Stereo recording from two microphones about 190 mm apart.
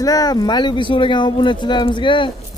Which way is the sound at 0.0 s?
20° left (ahead or behind).